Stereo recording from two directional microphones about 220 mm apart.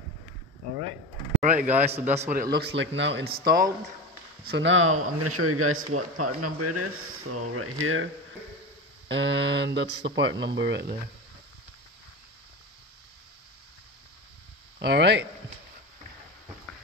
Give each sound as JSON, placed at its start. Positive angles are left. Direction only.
{"t": 1.4, "sound": "a man's voice", "side_deg": -35}
{"t": 2.2, "sound": "speech", "side_deg": -45}
{"t": 4.5, "sound": "speech", "side_deg": -55}
{"t": 5.2, "sound": "a man's voice", "side_deg": -90}
{"t": 5.9, "sound": "speech", "side_deg": -90}
{"t": 7.8, "sound": "a man's voice", "side_deg": -70}
{"t": 9.1, "sound": "speech", "side_deg": -50}
{"t": 14.8, "sound": "speech", "side_deg": -50}